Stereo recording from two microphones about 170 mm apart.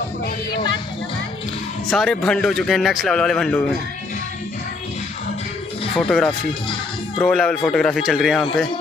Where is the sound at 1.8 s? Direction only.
Centre (ahead or behind).